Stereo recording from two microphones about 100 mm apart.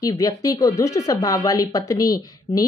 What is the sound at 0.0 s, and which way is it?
Speech, 35° left (ahead or behind).